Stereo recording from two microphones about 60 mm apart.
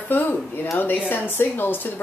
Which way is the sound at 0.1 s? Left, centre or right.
Left.